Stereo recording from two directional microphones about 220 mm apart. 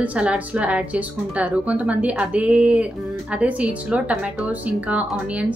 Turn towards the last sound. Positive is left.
turn(degrees=-5)  # may be behind; listen again after turning